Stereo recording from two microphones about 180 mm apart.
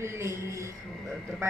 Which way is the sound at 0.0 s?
15° right (ahead or behind).